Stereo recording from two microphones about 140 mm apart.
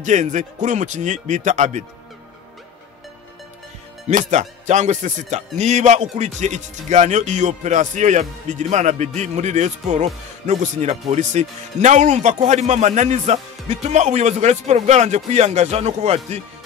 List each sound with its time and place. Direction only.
0.0 s music: 60° right (ahead or behind)
4.1 s music: 60° right (ahead or behind)